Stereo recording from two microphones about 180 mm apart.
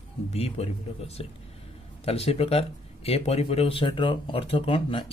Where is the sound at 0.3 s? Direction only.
35° left (ahead or behind).